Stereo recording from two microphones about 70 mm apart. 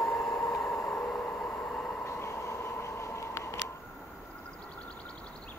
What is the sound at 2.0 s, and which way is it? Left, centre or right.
Train, left.